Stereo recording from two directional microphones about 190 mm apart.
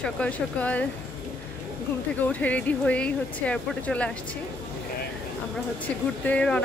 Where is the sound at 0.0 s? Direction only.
5° left (ahead or behind).